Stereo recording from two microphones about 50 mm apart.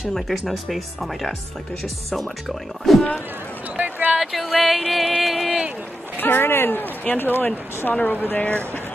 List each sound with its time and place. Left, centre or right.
0.1 s speech: centre
2.9 s speech: centre
3.7 s a sound: right
4.2 s speech: centre
6.1 s speech: left